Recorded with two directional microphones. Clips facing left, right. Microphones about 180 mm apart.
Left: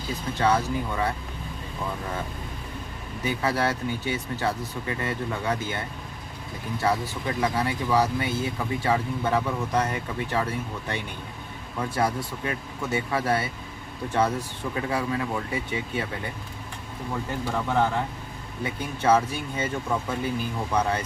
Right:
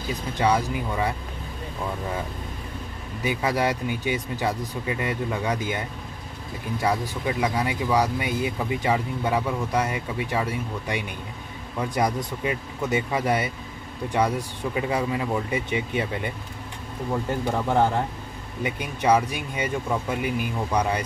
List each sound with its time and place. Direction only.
0.4 s speech: 15° right (ahead or behind)
3.3 s speech: 15° right (ahead or behind)
18.6 s speech: 15° right (ahead or behind)